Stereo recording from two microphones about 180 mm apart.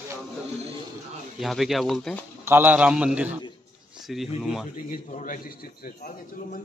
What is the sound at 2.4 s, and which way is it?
A man's voice, 10° right (ahead or behind).